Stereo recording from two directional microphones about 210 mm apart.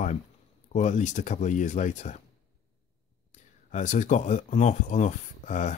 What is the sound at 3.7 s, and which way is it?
Speech, 35° left (ahead or behind).